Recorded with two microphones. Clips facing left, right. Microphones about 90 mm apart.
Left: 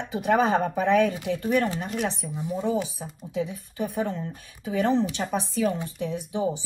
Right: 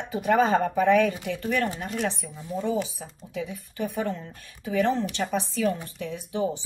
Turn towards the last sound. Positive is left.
turn(degrees=15)  # may be behind; listen again after turning